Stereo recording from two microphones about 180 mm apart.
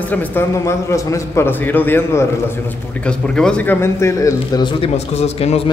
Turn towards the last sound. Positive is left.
turn(degrees=35)  # may be behind; listen again after turning